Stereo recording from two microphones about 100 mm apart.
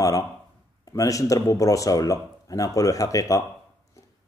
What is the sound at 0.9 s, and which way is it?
A man's voice, 35° left (ahead or behind).